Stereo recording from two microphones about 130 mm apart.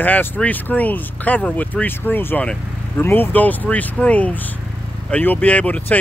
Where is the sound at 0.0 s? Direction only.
15° left (ahead or behind).